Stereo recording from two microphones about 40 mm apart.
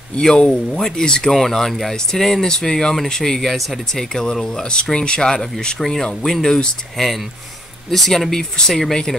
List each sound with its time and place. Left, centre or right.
0.2 s speech: centre
1.3 s speech: centre
3.9 s speech: centre
5.8 s speech: centre
7.0 s speech: centre